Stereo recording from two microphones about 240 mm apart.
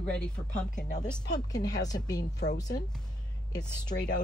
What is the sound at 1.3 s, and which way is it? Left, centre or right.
Speech, centre.